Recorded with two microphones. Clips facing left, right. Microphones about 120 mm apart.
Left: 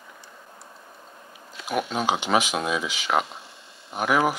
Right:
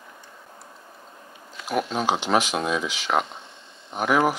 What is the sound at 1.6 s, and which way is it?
Speech, centre (ahead or behind).